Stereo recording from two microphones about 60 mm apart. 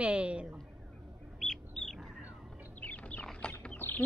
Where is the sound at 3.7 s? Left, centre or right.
Left.